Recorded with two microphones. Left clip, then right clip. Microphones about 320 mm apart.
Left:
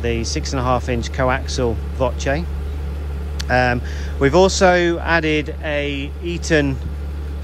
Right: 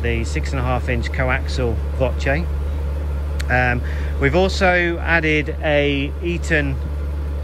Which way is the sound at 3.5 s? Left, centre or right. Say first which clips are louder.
Left 2 dB; centre.